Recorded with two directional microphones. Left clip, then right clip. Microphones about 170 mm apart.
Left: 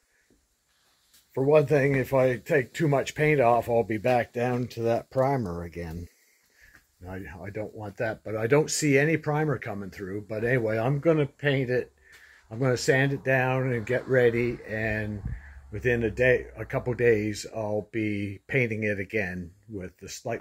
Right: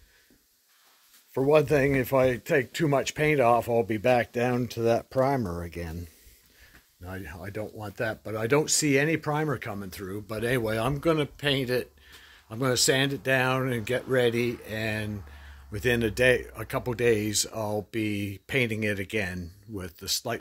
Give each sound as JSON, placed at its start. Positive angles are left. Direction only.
{"t": 1.3, "sound": "speech", "side_deg": -30}
{"t": 5.4, "sound": "speech", "side_deg": -30}
{"t": 15.8, "sound": "speech", "side_deg": -35}
{"t": 16.3, "sound": "speech", "side_deg": -25}
{"t": 17.5, "sound": "speech", "side_deg": -40}
{"t": 17.9, "sound": "speech", "side_deg": -25}